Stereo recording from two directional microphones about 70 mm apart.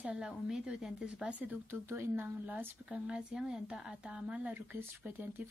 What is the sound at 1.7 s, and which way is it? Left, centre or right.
Speech, right.